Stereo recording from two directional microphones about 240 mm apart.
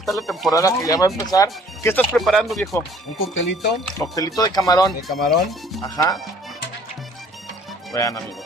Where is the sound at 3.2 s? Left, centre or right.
Left.